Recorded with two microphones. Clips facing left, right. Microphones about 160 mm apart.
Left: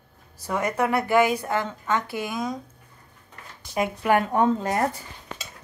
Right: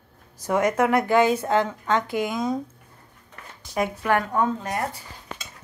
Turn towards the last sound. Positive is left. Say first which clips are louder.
# left 3 dB
turn(degrees=25)  # may be behind; listen again after turning